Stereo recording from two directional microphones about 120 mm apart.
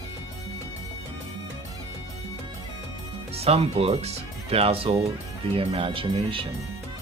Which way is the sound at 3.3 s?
55° right (ahead or behind).